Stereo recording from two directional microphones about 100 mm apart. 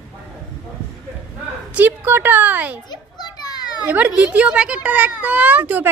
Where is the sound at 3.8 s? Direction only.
15° right (ahead or behind).